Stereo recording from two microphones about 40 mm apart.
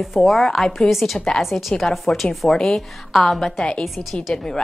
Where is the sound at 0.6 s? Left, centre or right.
Centre.